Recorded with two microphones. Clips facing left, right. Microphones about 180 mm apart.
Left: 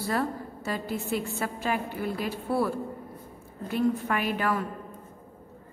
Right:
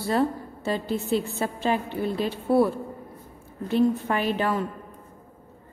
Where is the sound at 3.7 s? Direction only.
30° right (ahead or behind).